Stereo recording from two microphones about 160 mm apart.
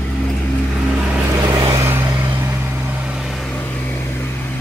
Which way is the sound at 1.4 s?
25° right (ahead or behind).